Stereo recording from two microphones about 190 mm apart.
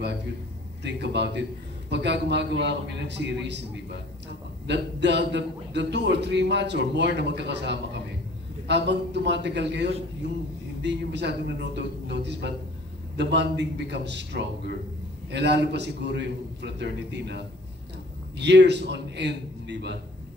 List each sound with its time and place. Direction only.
0.8 s a man's voice: 65° right (ahead or behind)
4.6 s a man's voice: 65° right (ahead or behind)